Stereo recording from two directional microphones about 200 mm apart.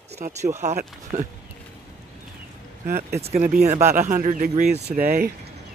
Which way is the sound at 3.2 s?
35° right (ahead or behind).